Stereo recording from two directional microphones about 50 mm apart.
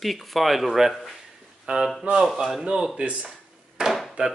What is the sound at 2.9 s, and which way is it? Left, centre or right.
Speech, right.